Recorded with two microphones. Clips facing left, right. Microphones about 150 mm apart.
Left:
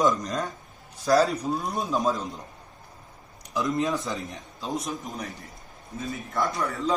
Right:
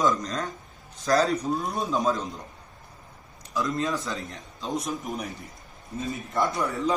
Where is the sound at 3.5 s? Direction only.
20° left (ahead or behind).